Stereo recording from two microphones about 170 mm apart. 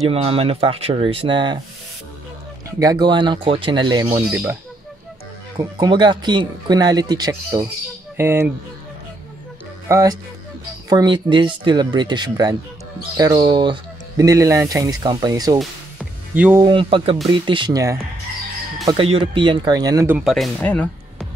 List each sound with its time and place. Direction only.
0.1 s speech: 35° right (ahead or behind)
2.8 s speech: 25° right (ahead or behind)
5.6 s speech: 25° right (ahead or behind)
9.8 s speech: 15° right (ahead or behind)
15.6 s music: 10° right (ahead or behind)
16.6 s speech: 30° right (ahead or behind)
20.2 s speech: centre (ahead or behind)